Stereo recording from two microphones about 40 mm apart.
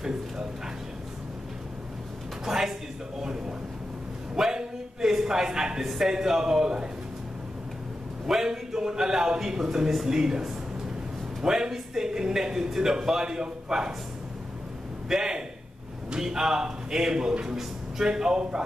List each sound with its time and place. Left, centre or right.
2.4 s speech: centre
3.2 s a sound: centre
5.9 s a man's voice: centre
8.3 s a man's voice: centre
15.0 s a man's voice: centre